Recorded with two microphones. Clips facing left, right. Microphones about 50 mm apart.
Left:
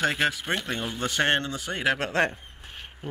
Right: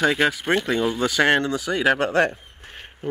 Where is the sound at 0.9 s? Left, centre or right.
Right.